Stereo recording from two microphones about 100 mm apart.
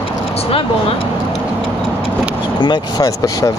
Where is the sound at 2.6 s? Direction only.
45° left (ahead or behind).